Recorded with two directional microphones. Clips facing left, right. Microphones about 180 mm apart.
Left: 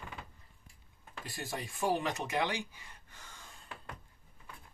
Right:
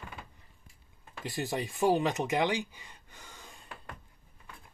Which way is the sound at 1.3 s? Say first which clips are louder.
Right 8 dB; 20° right (ahead or behind).